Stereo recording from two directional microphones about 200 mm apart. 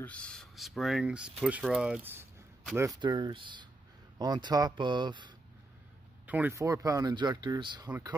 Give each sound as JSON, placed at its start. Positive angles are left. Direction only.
{"t": 0.0, "sound": "speech", "side_deg": 5}
{"t": 6.2, "sound": "speech", "side_deg": -10}